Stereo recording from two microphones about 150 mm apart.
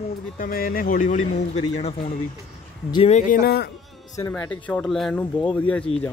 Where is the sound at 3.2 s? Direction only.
85° left.